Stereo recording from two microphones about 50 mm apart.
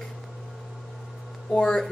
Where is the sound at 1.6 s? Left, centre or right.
Centre.